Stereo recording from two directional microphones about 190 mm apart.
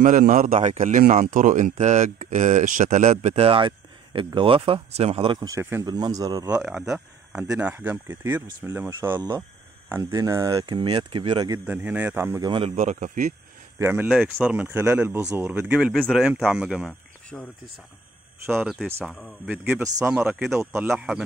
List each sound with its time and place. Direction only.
0.0 s a man's voice: 45° right (ahead or behind); by 6.5 s 20° right (ahead or behind)
6.5 s speech: 5° right (ahead or behind)
7.4 s speech: 15° right (ahead or behind)
11.6 s speech: 10° right (ahead or behind); by 12.7 s 25° right (ahead or behind)
12.7 s a man's voice: 40° right (ahead or behind)
13.7 s speech: 10° right (ahead or behind)
18.4 s speech: 10° right (ahead or behind)
19.0 s speech: centre (ahead or behind)
19.5 s speech: 15° right (ahead or behind)